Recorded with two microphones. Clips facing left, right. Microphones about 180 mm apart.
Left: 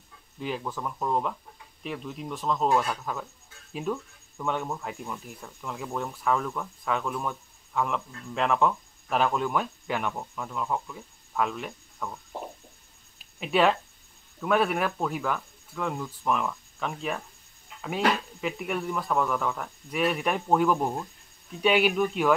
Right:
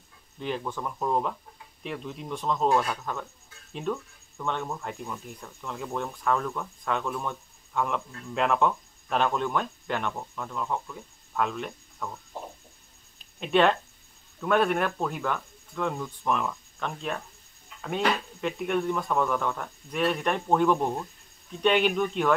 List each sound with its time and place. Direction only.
0.4 s speech: 5° left (ahead or behind)
13.2 s speech: 5° left (ahead or behind)